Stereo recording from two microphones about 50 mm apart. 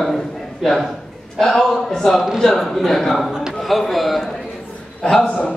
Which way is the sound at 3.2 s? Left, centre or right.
Centre.